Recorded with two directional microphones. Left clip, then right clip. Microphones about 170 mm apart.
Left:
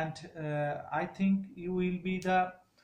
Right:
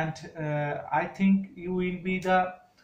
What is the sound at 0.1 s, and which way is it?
Speech, 20° left (ahead or behind).